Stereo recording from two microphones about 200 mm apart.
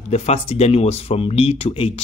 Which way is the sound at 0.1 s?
30° left (ahead or behind).